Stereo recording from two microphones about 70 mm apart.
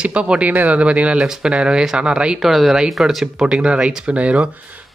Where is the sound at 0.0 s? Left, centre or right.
Centre.